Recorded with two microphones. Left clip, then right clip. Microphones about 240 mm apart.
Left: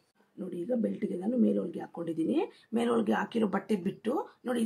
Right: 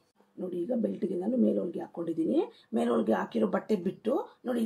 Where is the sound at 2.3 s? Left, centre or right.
Left.